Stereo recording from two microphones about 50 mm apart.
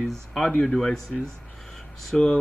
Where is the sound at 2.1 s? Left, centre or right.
Centre.